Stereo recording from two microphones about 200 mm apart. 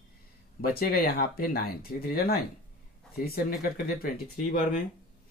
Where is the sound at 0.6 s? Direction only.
50° left (ahead or behind).